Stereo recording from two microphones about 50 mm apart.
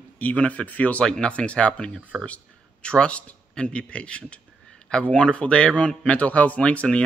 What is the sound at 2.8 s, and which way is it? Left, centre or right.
Speech, left.